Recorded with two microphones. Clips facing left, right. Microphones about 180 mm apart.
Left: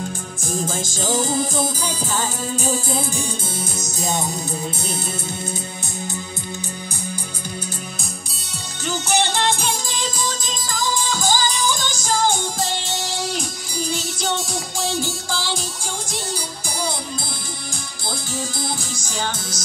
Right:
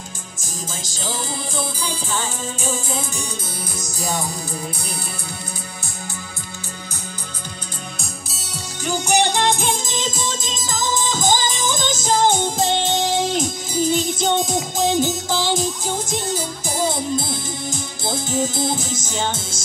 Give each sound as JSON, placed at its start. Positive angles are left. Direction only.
{"t": 0.6, "sound": "music", "side_deg": 50}
{"t": 8.0, "sound": "music", "side_deg": -5}
{"t": 18.1, "sound": "music", "side_deg": -20}